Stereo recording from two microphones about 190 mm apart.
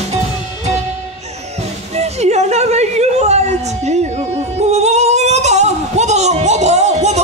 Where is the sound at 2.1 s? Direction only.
35° right (ahead or behind).